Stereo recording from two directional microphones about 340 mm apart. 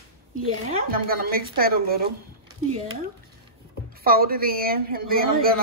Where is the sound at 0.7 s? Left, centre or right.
Right.